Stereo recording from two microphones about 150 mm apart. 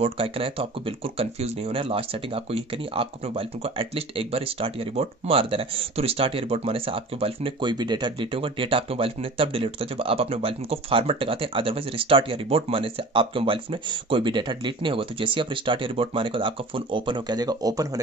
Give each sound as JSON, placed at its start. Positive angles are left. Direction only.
{"t": 0.0, "sound": "speech", "side_deg": -40}